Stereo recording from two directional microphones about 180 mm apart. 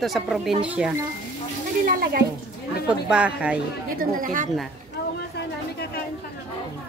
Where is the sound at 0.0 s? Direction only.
Centre (ahead or behind).